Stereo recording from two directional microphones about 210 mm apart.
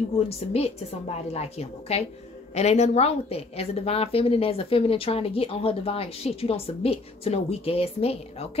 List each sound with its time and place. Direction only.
0.5 s a woman's voice: 30° left (ahead or behind)